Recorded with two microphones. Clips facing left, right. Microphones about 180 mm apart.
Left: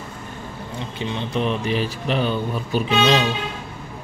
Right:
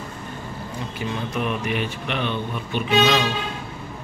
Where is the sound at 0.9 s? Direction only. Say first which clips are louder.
Left 3 dB; 25° left (ahead or behind).